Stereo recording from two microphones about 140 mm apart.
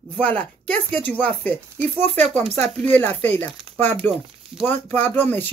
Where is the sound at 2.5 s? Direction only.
10° left (ahead or behind).